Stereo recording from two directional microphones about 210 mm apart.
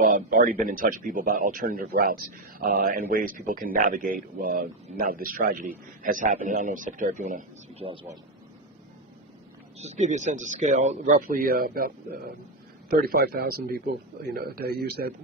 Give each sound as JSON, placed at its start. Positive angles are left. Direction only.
{"t": 0.0, "sound": "speech", "side_deg": -40}
{"t": 7.8, "sound": "speech", "side_deg": -25}
{"t": 9.8, "sound": "a man's voice", "side_deg": -35}